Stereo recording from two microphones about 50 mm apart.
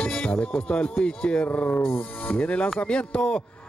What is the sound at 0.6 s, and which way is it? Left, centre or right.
Speech, left.